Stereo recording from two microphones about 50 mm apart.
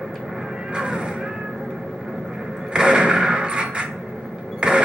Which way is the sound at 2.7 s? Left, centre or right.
Centre.